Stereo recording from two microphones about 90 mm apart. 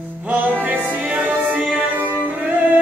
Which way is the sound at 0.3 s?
20° right (ahead or behind).